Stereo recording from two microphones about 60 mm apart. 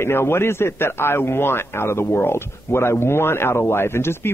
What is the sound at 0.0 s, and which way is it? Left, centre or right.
A man's voice, left.